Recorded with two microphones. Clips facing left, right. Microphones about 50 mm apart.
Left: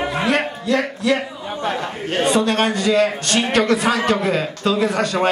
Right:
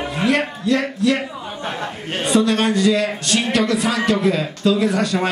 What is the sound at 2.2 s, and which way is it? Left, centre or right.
A man's voice, left.